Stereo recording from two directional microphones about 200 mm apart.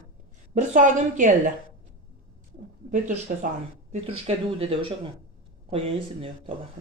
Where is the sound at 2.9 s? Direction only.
40° right (ahead or behind).